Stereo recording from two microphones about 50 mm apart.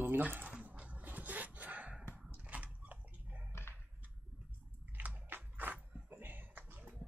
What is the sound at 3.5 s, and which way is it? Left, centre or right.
Dog, left.